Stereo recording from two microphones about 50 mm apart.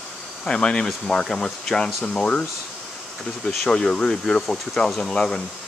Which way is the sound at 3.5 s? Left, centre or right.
Centre.